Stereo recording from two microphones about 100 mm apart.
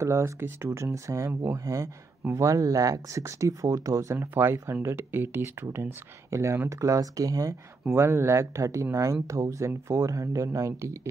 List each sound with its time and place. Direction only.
0.0 s speech: 25° right (ahead or behind)